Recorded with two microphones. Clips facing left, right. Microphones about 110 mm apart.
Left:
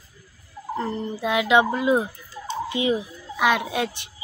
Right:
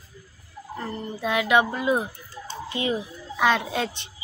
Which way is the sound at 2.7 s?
15° left (ahead or behind).